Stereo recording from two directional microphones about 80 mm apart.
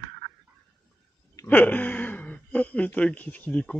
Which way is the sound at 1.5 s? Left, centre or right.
Left.